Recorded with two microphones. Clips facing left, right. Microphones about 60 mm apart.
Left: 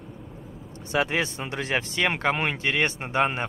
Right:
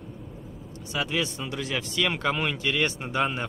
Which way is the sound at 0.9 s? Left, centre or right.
Left.